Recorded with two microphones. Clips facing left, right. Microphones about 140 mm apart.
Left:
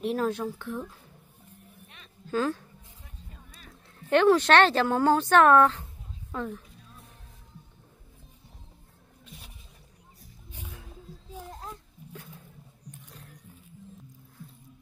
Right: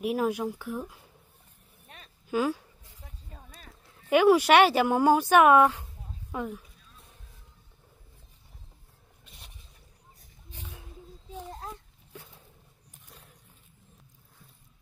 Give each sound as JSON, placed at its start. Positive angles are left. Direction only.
{"t": 0.0, "sound": "speech", "side_deg": -10}
{"t": 2.2, "sound": "speech", "side_deg": -10}
{"t": 3.3, "sound": "music", "side_deg": -40}
{"t": 4.1, "sound": "speech", "side_deg": -10}
{"t": 9.2, "sound": "a sound", "side_deg": 0}
{"t": 11.6, "sound": "a sound", "side_deg": -15}